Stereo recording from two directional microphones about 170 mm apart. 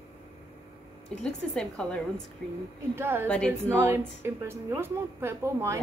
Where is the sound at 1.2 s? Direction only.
5° left (ahead or behind).